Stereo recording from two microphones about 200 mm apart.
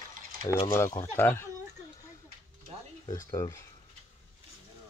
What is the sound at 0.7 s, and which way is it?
Speech, 15° left (ahead or behind).